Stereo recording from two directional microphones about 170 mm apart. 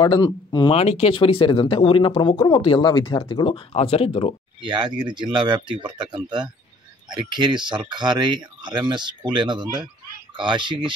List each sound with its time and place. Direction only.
0.0 s speech: 30° left (ahead or behind)
4.6 s speech: 25° right (ahead or behind)